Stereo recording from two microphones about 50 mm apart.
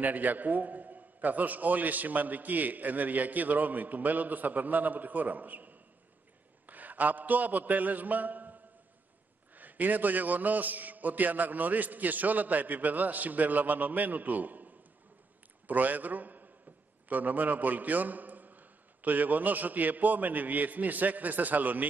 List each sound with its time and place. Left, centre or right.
0.0 s a man's voice: right
9.6 s a man's voice: right